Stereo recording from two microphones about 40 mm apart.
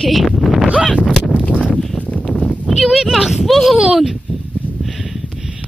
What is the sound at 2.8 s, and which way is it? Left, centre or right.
Speech, centre.